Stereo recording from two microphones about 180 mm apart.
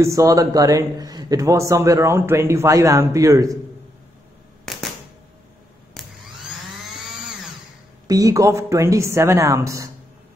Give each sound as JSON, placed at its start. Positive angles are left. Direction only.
{"t": 0.0, "sound": "a man's voice", "side_deg": -15}
{"t": 6.0, "sound": "a sound", "side_deg": 0}
{"t": 8.1, "sound": "a man's voice", "side_deg": -20}